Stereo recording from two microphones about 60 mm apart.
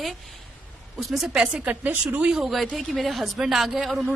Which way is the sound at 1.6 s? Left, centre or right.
Right.